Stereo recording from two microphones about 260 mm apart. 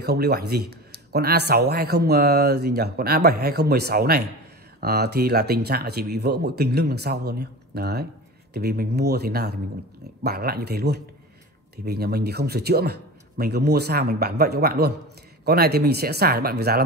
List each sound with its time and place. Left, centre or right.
0.0 s speech: right